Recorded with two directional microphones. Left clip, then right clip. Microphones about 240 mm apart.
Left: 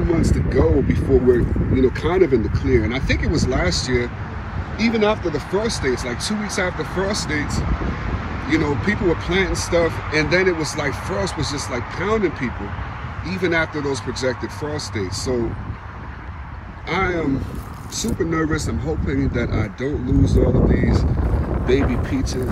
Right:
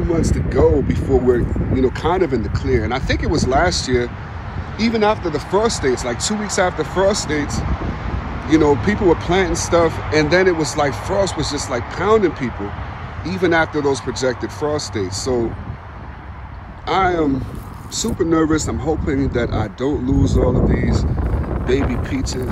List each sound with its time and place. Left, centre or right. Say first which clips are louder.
0.2 s speech: right 3 dB; centre
16.8 s speech: right 5 dB; centre
21.9 s speech: even; centre